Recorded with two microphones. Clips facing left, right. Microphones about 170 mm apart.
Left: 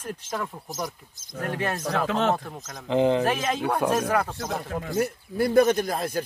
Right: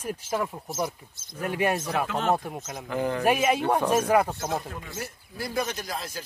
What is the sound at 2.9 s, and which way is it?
Speech, 20° left (ahead or behind).